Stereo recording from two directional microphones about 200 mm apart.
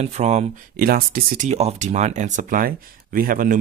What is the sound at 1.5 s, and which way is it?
Speech, 35° right (ahead or behind).